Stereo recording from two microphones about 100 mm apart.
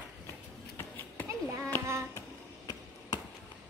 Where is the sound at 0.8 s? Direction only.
20° left (ahead or behind).